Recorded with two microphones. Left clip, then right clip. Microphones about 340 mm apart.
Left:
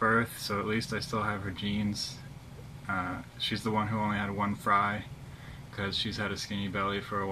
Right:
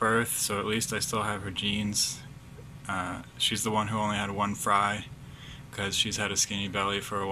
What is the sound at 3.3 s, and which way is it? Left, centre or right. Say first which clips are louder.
Speech: right 6 dB; right.